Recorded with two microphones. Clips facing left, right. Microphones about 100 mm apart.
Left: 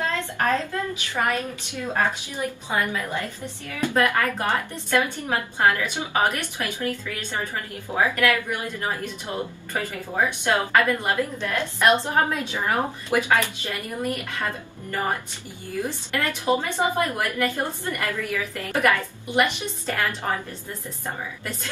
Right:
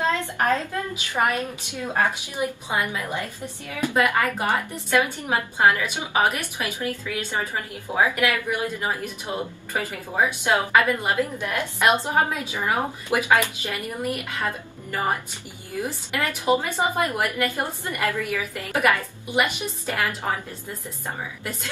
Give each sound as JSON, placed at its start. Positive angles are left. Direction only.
{"t": 0.4, "sound": "speech", "side_deg": -15}
{"t": 15.8, "sound": "speech", "side_deg": -15}